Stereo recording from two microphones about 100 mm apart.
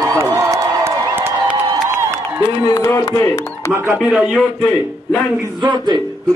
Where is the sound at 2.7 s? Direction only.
25° left (ahead or behind).